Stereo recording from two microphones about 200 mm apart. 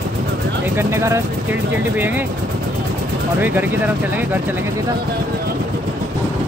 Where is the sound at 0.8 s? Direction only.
15° right (ahead or behind).